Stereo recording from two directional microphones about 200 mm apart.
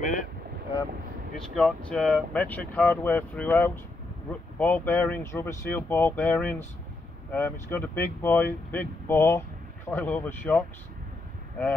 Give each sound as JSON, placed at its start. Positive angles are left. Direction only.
{"t": 0.0, "sound": "boat", "side_deg": 40}
{"t": 1.5, "sound": "speech", "side_deg": 5}